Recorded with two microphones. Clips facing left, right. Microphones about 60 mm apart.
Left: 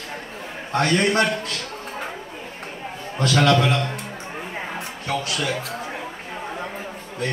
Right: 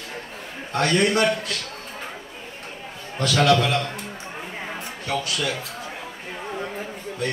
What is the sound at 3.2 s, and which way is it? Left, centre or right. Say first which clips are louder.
Speech: left 1 dB; left.